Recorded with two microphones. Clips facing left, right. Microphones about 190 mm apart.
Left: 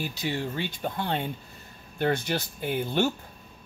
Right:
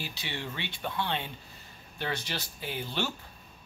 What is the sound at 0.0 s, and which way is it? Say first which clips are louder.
Speech: left 8 dB; 45° left (ahead or behind).